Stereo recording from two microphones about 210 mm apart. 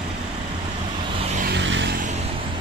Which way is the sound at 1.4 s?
55° right (ahead or behind).